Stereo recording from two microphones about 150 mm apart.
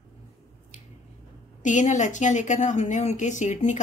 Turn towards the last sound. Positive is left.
turn(degrees=50)  # may be behind; listen again after turning